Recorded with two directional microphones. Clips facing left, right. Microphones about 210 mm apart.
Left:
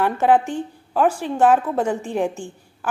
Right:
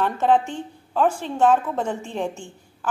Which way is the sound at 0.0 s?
10° left (ahead or behind).